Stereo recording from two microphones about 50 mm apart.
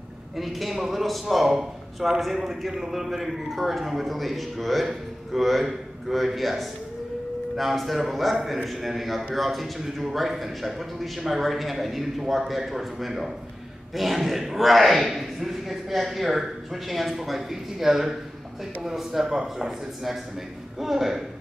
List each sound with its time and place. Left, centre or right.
0.4 s a man's voice: centre